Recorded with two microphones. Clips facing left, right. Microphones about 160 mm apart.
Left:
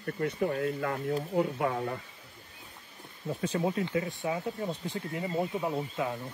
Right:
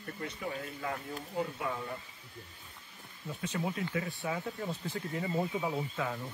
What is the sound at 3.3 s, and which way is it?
Speech, 35° left (ahead or behind).